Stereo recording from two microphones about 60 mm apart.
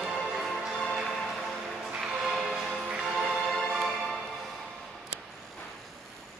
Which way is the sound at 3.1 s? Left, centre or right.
Centre.